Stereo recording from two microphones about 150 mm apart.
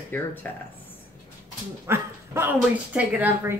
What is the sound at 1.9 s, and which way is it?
A woman's voice, 15° right (ahead or behind).